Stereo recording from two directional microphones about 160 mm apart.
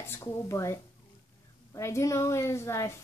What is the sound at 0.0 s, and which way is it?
A child's voice, 15° left (ahead or behind).